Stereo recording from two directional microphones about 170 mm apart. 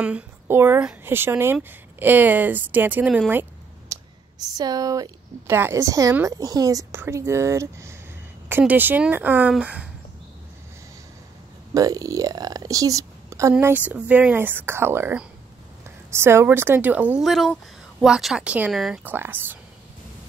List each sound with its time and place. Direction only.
0.0 s a woman's voice: 10° right (ahead or behind)
3.9 s clicking: 20° right (ahead or behind)
4.6 s a woman's voice: 20° right (ahead or behind)
11.7 s a woman's voice: 20° right (ahead or behind); by 18.9 s centre (ahead or behind)
19.0 s a woman's voice: 10° right (ahead or behind)